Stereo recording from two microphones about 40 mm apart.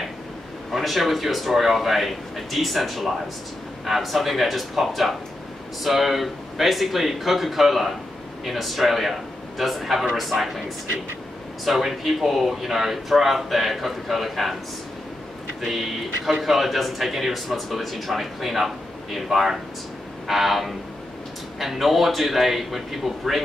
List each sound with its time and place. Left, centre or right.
0.7 s speech: centre
11.6 s speech: centre
15.6 s speech: centre